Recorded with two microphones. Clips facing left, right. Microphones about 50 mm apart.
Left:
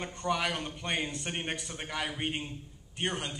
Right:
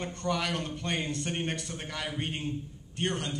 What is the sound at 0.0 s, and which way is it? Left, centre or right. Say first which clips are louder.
A man's voice: even; centre.